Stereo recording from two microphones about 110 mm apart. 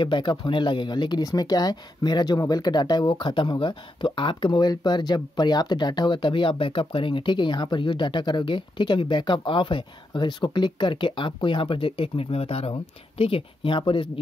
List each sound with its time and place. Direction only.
0.0 s speech: 45° left (ahead or behind); by 12.7 s 65° left (ahead or behind)
13.2 s speech: 55° left (ahead or behind)